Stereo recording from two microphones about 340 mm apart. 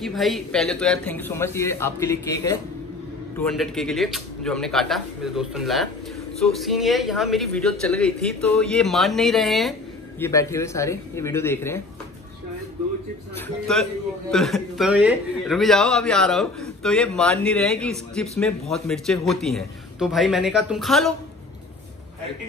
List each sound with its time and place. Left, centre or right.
0.0 s a man's voice: centre
13.7 s speech: centre